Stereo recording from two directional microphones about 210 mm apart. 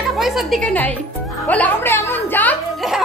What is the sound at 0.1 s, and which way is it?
A woman's voice, centre (ahead or behind).